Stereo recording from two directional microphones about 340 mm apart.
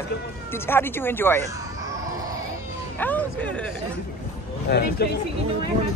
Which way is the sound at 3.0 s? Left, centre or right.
Centre.